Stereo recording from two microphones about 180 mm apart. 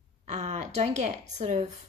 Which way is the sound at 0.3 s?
40° right (ahead or behind).